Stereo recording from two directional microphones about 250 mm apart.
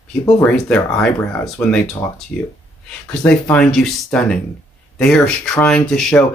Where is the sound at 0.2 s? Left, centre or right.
Centre.